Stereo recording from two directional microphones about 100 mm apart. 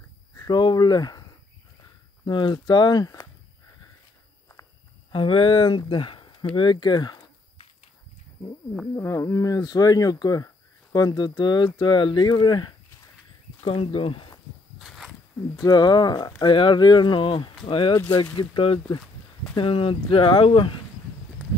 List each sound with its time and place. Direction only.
0.4 s speech: 45° left (ahead or behind)
2.2 s speech: 50° left (ahead or behind)
5.1 s speech: 60° left (ahead or behind)
8.9 s speech: 30° left (ahead or behind); by 14.3 s 60° left (ahead or behind)
14.8 s a sound: centre (ahead or behind)
15.6 s speech: 45° left (ahead or behind); by 17.9 s 60° left (ahead or behind)
18.1 s speech: 45° left (ahead or behind)
19.5 s speech: 60° left (ahead or behind)